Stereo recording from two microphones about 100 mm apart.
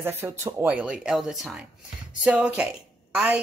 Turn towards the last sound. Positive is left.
turn(degrees=-10)  # may be behind; listen again after turning